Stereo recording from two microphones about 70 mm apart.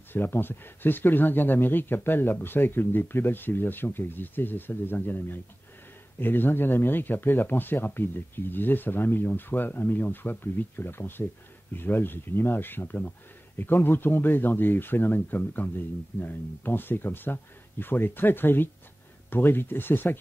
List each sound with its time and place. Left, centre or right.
0.1 s speech: left